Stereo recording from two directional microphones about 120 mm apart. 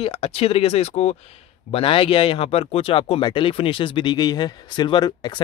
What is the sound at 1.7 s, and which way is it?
Speech, 50° left (ahead or behind).